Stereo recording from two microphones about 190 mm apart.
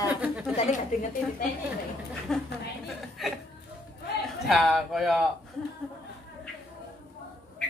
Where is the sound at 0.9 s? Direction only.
45° left (ahead or behind).